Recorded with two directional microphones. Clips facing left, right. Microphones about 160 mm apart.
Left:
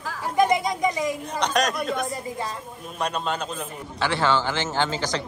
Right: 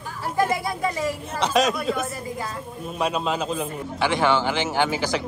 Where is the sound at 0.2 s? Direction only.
15° left (ahead or behind).